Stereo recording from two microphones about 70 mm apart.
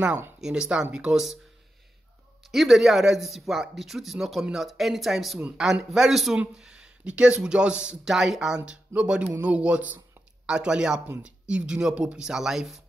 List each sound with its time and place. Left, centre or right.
0.4 s speech: centre
2.5 s speech: centre